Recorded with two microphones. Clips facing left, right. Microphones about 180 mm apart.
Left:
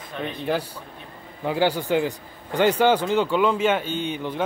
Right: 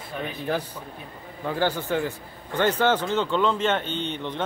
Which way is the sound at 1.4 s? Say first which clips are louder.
Left 3 dB; 15° left (ahead or behind).